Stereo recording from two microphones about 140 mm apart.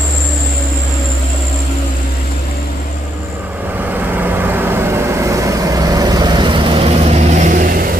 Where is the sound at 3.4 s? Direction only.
10° right (ahead or behind).